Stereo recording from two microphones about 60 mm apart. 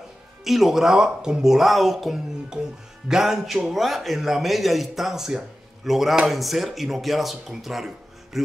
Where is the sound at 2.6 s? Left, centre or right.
Centre.